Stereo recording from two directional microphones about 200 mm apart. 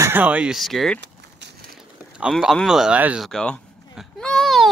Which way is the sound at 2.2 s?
Centre (ahead or behind).